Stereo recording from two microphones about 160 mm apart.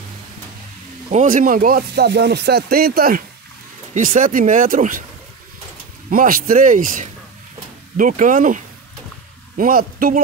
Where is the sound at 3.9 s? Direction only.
55° right (ahead or behind).